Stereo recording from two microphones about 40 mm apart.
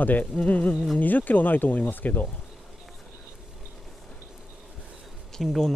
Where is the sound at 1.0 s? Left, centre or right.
Left.